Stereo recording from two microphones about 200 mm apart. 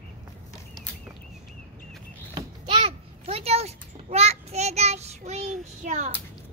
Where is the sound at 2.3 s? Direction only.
25° right (ahead or behind).